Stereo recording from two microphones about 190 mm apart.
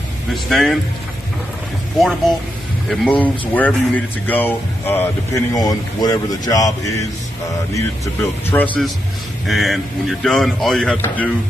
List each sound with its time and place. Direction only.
0.3 s speech: centre (ahead or behind)
2.0 s speech: centre (ahead or behind)